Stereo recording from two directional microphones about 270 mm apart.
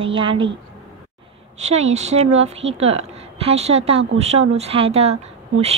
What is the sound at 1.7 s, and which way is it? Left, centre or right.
Speech, right.